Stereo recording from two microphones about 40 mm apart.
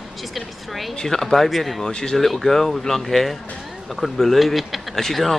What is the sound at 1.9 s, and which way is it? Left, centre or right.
Speech, centre.